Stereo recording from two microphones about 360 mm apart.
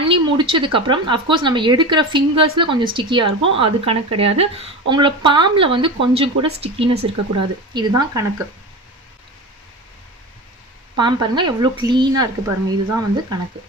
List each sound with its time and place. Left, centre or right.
0.0 s speech: centre
11.0 s speech: centre